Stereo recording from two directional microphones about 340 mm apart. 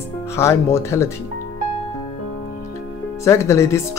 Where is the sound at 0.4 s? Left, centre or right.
Centre.